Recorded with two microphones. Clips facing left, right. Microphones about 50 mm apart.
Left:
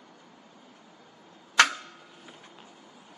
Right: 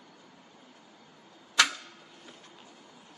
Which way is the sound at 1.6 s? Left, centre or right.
Left.